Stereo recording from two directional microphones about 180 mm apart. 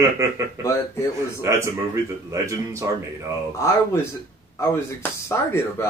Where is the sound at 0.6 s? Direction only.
15° left (ahead or behind).